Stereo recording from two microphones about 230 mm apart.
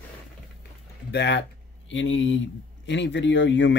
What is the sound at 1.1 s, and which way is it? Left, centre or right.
Speech, left.